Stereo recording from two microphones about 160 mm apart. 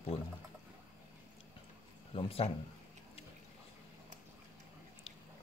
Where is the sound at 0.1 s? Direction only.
35° left (ahead or behind).